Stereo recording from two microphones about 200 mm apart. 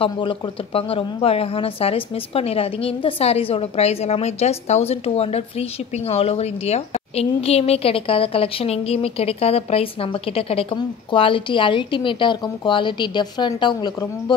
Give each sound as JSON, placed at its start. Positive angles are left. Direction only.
{"t": 0.0, "sound": "speech", "side_deg": 25}